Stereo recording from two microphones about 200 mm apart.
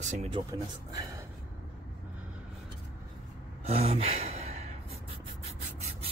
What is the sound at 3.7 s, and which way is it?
Gasp, 30° right (ahead or behind).